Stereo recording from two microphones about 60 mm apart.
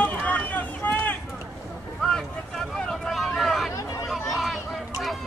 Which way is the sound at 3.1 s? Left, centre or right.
Centre.